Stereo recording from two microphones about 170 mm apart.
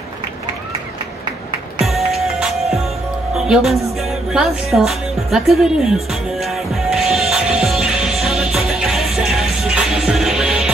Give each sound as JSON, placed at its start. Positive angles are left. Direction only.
{"t": 1.9, "sound": "music", "side_deg": 0}
{"t": 3.3, "sound": "a woman's voice", "side_deg": -5}
{"t": 4.0, "sound": "music", "side_deg": -5}